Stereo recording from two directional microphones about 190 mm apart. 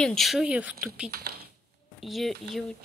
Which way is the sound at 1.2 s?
55° right (ahead or behind).